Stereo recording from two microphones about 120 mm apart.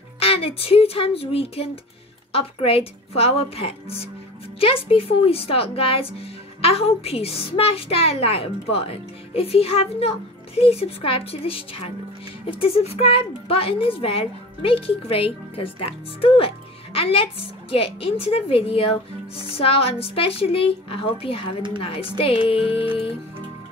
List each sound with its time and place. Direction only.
0.2 s a woman's voice: 55° left (ahead or behind)